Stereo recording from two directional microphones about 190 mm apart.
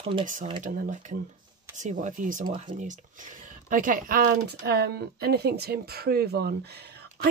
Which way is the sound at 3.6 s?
45° right (ahead or behind).